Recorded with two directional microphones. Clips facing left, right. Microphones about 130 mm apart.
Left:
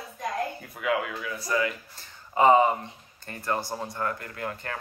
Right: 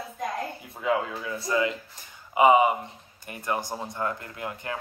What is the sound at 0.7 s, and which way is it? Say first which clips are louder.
A man's voice: right 3 dB; 25° right (ahead or behind).